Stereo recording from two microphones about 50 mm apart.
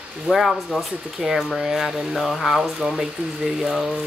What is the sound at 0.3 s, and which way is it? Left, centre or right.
Speech, centre.